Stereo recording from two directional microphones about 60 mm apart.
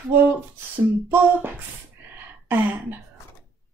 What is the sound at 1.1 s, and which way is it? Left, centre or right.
Speech, right.